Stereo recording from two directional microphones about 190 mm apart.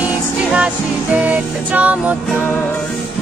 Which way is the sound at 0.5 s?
5° right (ahead or behind).